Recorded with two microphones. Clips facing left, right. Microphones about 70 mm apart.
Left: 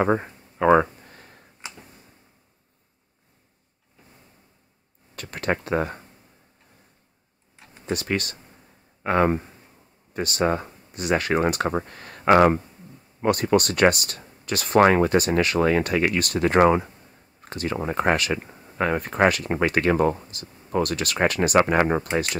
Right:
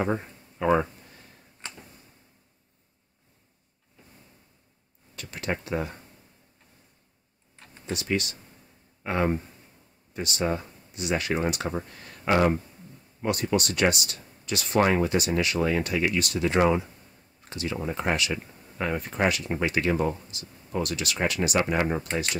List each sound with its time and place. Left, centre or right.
0.0 s a sound: left
1.6 s tick-tock: centre
5.1 s speech: left
7.5 s tick-tock: centre
7.9 s speech: left